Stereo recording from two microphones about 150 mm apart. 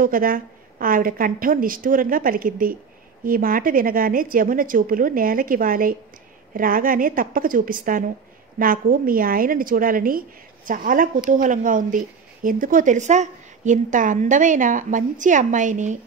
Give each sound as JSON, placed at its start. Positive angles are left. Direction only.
{"t": 0.0, "sound": "a woman's voice", "side_deg": -70}